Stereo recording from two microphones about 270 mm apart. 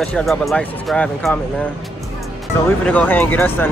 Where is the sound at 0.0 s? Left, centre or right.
Centre.